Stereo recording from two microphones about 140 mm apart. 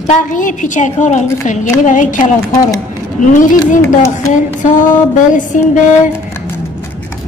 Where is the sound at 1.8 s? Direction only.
65° left (ahead or behind).